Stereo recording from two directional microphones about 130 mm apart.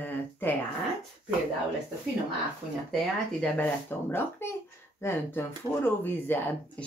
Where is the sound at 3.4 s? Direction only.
10° left (ahead or behind).